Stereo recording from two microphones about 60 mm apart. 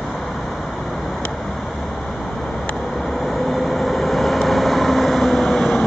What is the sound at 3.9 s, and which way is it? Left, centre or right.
Vehicle, centre.